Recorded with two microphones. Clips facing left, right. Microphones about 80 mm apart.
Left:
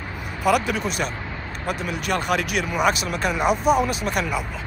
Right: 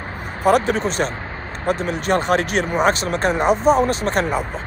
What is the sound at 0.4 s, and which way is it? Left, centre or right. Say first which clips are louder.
Speech: right 4 dB; right.